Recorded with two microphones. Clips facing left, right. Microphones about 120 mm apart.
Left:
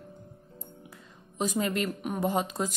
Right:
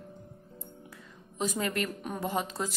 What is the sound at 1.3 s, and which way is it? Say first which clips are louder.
A woman's voice: left 2 dB; 20° left (ahead or behind).